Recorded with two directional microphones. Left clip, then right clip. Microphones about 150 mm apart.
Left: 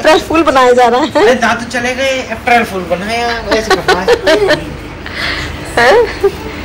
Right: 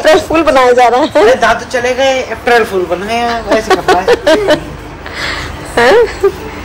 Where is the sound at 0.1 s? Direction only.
5° right (ahead or behind).